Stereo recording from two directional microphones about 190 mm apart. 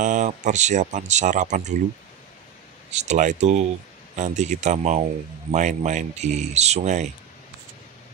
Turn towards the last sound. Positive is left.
turn(degrees=-40)  # may be behind; listen again after turning